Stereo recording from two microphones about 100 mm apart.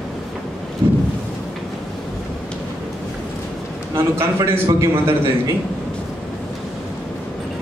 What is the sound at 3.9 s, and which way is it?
A man's voice, 30° right (ahead or behind).